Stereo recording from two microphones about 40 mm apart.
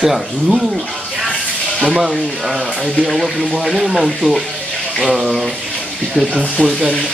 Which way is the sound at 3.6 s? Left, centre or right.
Centre.